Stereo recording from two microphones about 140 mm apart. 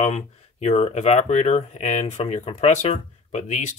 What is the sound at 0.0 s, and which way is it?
Speech, 50° left (ahead or behind).